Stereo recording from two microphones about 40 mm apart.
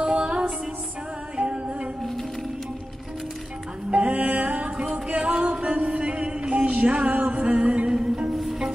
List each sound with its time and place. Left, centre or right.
0.0 s music: right
3.9 s music: right
8.3 s music: centre